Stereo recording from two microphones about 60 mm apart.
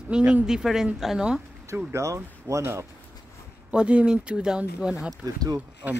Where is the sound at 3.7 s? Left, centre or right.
Centre.